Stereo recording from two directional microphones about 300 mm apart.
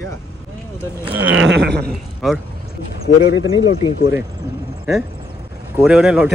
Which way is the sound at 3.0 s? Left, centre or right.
Left.